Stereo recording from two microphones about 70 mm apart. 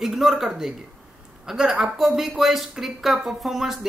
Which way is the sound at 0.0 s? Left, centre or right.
Centre.